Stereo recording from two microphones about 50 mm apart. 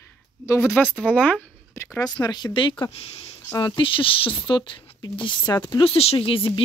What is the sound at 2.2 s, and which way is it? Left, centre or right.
Speech, left.